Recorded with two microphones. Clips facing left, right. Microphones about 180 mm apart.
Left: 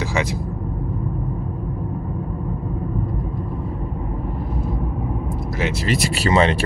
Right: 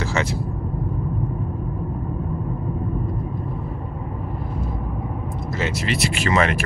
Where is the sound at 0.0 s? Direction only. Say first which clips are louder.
Left 1 dB; 15° left (ahead or behind).